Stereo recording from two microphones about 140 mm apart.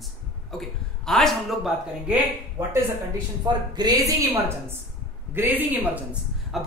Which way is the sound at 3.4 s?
30° right (ahead or behind).